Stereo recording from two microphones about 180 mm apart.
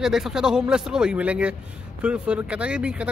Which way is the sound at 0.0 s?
5° right (ahead or behind).